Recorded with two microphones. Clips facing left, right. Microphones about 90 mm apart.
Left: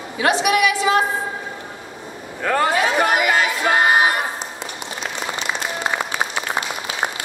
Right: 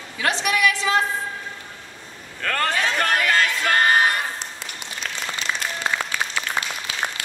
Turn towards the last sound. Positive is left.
turn(degrees=25)  # may be behind; listen again after turning